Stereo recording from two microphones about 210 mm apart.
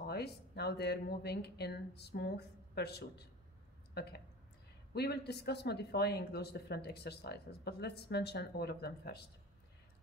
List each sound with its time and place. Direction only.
0.0 s speech: 50° left (ahead or behind)